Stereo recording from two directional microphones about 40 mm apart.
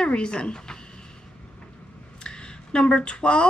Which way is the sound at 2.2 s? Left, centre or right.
Left.